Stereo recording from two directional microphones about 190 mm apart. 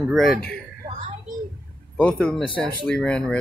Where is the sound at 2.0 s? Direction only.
5° left (ahead or behind).